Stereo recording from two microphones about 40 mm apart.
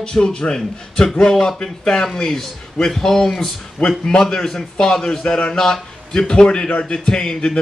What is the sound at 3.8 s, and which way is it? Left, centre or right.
Speech, left.